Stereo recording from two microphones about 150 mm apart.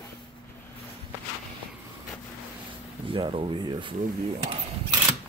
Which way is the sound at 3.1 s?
35° right (ahead or behind).